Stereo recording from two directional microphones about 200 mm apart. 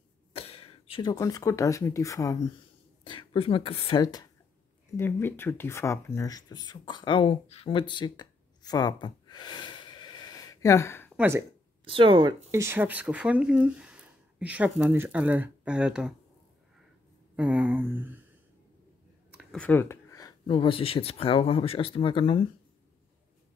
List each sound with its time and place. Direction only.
0.3 s speech: 30° left (ahead or behind); by 11.1 s 10° left (ahead or behind)
11.1 s speech: 10° right (ahead or behind)
11.8 s speech: 25° right (ahead or behind)
12.4 s speech: 15° right (ahead or behind)
17.4 s speech: 5° right (ahead or behind)
19.3 s speech: 5° left (ahead or behind); by 22.4 s 25° left (ahead or behind)